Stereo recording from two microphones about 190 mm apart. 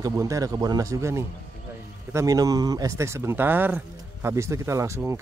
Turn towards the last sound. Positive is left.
turn(degrees=-15)  # may be behind; listen again after turning